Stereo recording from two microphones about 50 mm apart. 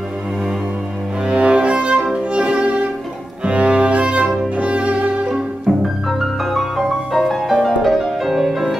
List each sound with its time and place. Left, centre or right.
1.2 s music: right
3.4 s cello: right
4.6 s music: right
5.3 s music: centre